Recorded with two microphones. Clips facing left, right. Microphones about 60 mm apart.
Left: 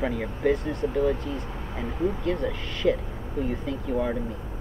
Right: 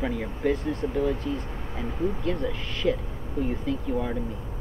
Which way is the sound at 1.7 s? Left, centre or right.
Centre.